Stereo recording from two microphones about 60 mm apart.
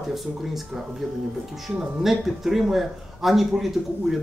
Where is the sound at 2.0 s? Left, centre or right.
Centre.